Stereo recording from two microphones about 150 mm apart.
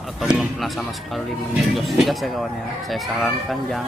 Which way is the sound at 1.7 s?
Centre (ahead or behind).